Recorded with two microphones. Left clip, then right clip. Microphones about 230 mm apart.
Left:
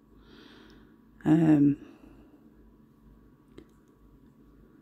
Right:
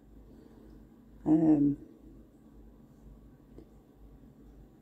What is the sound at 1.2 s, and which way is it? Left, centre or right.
Speech, left.